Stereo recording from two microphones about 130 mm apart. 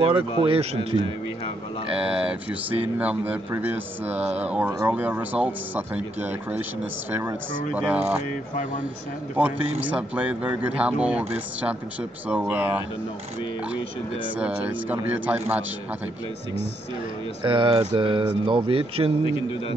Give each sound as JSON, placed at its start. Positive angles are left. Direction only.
{"t": 0.4, "sound": "speech", "side_deg": -40}
{"t": 0.7, "sound": "a man's voice", "side_deg": 45}
{"t": 1.9, "sound": "speech", "side_deg": -10}
{"t": 9.4, "sound": "speech", "side_deg": -10}
{"t": 14.4, "sound": "speech", "side_deg": -15}
{"t": 17.4, "sound": "speech", "side_deg": -40}